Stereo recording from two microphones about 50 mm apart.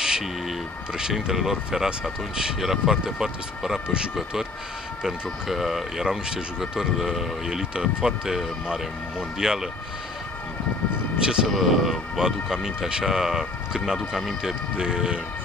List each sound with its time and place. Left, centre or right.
0.0 s speech: centre
9.4 s speech: centre
11.1 s speech: centre
11.4 s speech: centre
14.4 s speech: centre